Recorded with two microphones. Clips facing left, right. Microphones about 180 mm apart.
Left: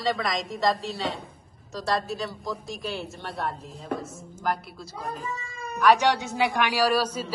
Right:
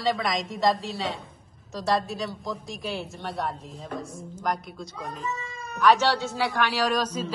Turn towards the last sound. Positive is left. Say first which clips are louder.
# left 2 dB
turn(degrees=10)  # may be behind; listen again after turning